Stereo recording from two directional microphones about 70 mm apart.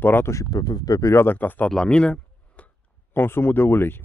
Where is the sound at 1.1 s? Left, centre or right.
Left.